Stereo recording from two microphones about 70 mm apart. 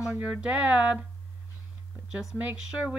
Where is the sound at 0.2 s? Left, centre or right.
Centre.